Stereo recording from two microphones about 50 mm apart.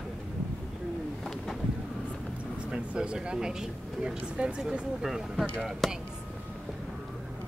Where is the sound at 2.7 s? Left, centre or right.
Centre.